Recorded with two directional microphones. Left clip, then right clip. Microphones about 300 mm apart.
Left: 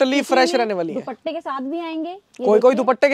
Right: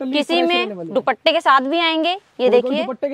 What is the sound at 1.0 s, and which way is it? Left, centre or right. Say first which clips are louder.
A woman's voice: right 12 dB; centre.